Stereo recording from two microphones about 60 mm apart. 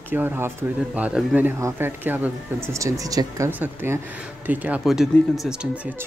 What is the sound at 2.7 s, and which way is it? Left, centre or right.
Speech, right.